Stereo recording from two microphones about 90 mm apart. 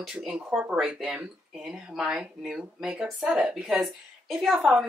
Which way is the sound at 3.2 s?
15° right (ahead or behind).